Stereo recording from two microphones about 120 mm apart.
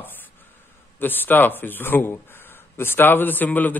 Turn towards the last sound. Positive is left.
turn(degrees=15)  # may be behind; listen again after turning